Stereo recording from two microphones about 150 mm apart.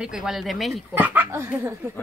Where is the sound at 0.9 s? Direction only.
10° right (ahead or behind).